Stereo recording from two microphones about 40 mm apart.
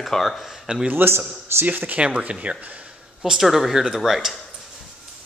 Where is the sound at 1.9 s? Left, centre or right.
Right.